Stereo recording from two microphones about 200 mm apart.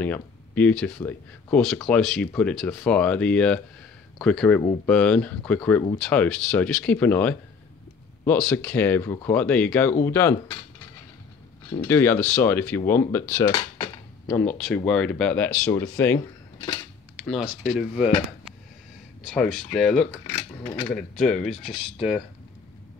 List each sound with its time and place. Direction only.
0.0 s speech: 10° left (ahead or behind)
11.8 s speech: 10° left (ahead or behind)
14.2 s speech: 5° left (ahead or behind)
17.3 s speech: centre (ahead or behind)
19.2 s speech: centre (ahead or behind)